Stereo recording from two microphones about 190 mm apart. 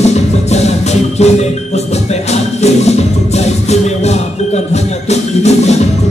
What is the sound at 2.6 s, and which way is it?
Music, 35° left (ahead or behind).